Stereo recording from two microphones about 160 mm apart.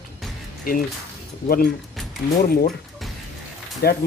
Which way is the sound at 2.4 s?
70° left (ahead or behind).